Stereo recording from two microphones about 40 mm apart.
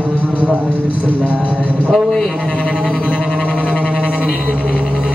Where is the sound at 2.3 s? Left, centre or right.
Right.